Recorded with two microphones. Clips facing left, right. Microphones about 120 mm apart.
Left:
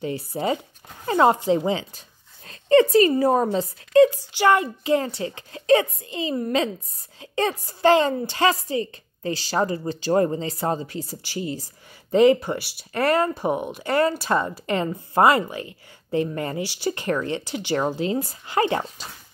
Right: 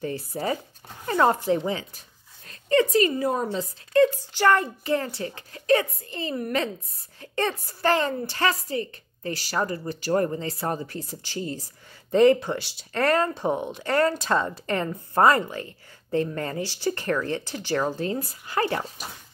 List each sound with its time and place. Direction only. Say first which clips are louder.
0.0 s a woman's voice: left 3 dB; 15° left (ahead or behind)
2.4 s speech: left 5 dB; 30° left (ahead or behind)
3.9 s a woman's voice: left 4 dB; 15° left (ahead or behind)
11.0 s a woman's voice: left 2 dB; 10° left (ahead or behind)